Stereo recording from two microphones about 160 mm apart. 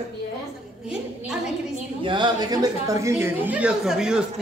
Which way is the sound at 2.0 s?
30° right (ahead or behind).